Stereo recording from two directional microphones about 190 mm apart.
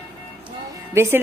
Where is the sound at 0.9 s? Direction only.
15° right (ahead or behind).